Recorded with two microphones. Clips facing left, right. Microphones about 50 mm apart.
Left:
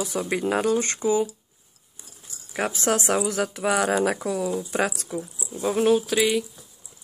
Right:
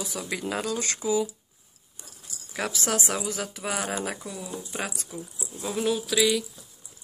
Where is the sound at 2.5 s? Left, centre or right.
Left.